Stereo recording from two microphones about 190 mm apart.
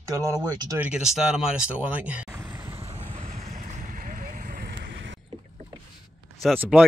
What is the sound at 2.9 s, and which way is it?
Boat, 35° right (ahead or behind).